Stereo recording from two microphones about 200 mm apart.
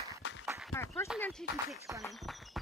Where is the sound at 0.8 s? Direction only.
15° left (ahead or behind).